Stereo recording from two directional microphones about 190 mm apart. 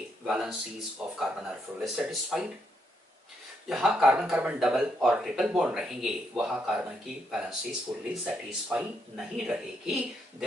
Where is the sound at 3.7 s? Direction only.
5° right (ahead or behind).